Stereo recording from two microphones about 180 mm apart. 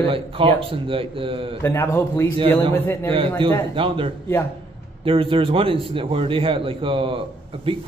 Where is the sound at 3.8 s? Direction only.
30° right (ahead or behind).